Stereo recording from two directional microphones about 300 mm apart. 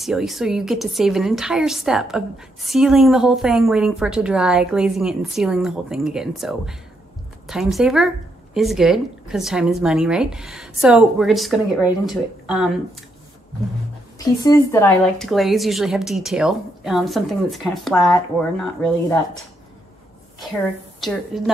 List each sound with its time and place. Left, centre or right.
0.0 s a woman's voice: centre
14.1 s a woman's voice: centre
21.3 s a woman's voice: centre